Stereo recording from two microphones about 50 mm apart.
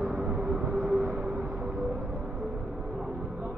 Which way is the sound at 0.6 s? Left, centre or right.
Centre.